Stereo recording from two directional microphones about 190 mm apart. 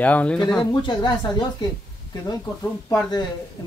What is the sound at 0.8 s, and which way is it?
Speech, 25° left (ahead or behind).